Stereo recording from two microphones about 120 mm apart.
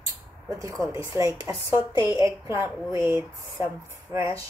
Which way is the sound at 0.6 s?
25° right (ahead or behind).